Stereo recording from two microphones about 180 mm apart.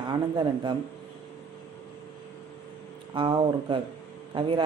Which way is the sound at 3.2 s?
25° right (ahead or behind).